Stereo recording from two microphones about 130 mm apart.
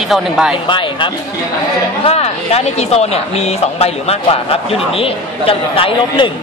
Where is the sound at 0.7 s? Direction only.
40° left (ahead or behind).